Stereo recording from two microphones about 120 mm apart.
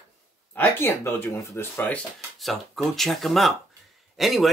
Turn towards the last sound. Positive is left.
turn(degrees=0)  # may be behind; listen again after turning